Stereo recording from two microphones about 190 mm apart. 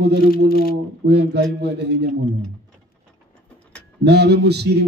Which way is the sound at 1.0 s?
60° right (ahead or behind).